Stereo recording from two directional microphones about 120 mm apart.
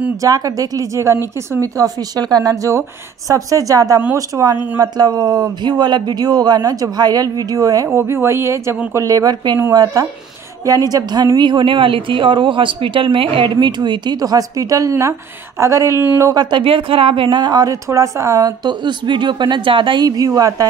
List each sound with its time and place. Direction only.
0.2 s a woman's voice: 30° right (ahead or behind)
20.1 s a woman's voice: 30° right (ahead or behind)